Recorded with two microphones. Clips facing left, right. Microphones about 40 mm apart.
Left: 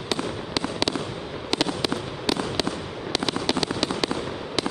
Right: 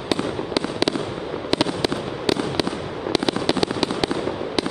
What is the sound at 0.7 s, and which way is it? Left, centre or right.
Fireworks, centre.